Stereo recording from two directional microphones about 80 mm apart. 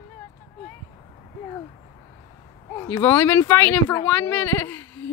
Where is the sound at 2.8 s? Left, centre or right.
Left.